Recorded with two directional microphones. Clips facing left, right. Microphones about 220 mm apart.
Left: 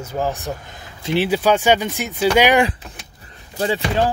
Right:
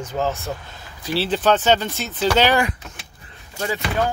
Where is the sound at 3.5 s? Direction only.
30° left (ahead or behind).